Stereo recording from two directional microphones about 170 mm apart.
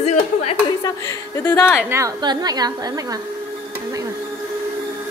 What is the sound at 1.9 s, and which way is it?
A woman's voice, 20° right (ahead or behind).